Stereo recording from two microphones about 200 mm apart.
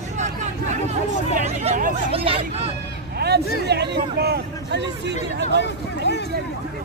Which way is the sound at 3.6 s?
55° right (ahead or behind).